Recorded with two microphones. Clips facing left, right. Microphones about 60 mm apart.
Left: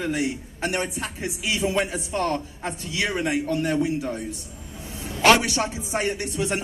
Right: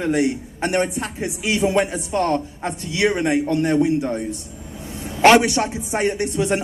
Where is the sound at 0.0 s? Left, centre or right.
Right.